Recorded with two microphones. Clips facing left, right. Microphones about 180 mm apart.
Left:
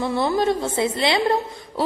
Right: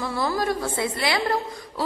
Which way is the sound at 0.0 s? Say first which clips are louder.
Left 5 dB; 25° left (ahead or behind).